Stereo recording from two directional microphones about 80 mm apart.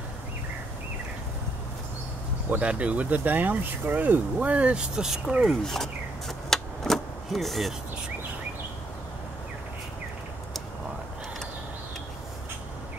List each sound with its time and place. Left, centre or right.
2.5 s speech: centre
5.6 s power windows: centre